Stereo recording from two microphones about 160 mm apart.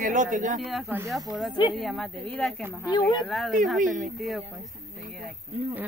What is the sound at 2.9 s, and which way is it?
Speech, 25° left (ahead or behind).